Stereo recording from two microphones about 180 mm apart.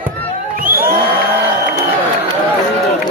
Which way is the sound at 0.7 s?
55° right (ahead or behind).